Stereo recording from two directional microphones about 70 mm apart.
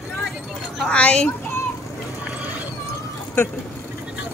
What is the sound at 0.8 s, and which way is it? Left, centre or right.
Speech, centre.